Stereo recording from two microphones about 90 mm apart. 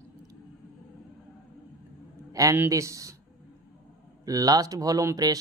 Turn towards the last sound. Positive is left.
turn(degrees=-40)  # may be behind; listen again after turning